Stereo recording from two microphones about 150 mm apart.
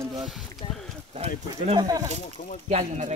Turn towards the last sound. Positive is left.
turn(degrees=-50)  # may be behind; listen again after turning